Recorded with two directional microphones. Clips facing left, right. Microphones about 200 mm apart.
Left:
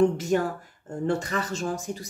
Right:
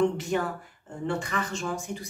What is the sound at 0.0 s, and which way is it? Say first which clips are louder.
Speech: left 3 dB; 40° left (ahead or behind).